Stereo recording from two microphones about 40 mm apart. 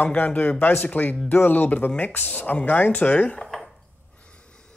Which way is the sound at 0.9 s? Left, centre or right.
Left.